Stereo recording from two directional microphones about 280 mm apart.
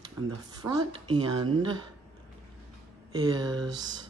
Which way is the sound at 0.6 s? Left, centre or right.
Centre.